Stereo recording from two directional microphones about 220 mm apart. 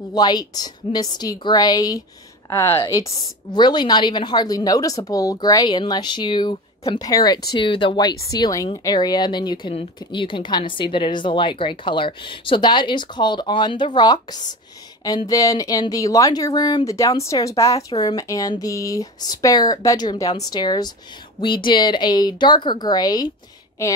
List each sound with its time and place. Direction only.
0.1 s speech: 20° left (ahead or behind)